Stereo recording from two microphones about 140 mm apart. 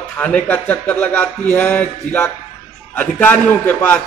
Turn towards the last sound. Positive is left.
turn(degrees=10)  # may be behind; listen again after turning